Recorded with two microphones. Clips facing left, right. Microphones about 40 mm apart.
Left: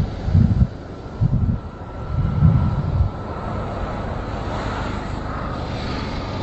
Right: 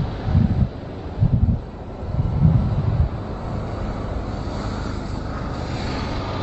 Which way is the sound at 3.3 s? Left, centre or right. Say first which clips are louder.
Left 2 dB; left.